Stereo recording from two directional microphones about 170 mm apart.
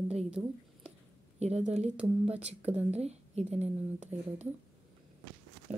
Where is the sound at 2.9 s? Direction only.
40° right (ahead or behind).